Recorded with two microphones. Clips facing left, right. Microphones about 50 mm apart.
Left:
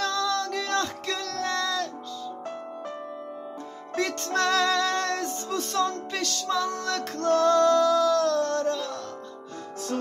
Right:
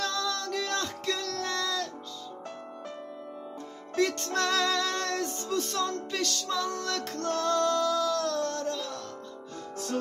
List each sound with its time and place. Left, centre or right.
0.0 s music: left
3.9 s music: left
8.4 s music: left